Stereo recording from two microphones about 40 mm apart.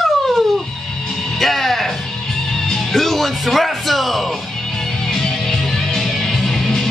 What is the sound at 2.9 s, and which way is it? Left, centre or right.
Music, centre.